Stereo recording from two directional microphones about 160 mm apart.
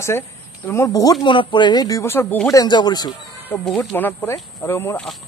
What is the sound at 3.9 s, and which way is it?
Speech, 15° left (ahead or behind).